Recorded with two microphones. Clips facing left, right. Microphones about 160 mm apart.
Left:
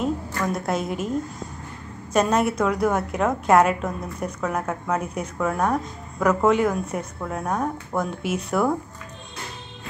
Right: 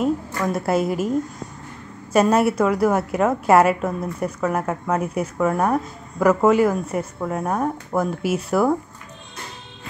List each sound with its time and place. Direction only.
0.0 s a woman's voice: 5° right (ahead or behind)
2.1 s a woman's voice: 5° right (ahead or behind)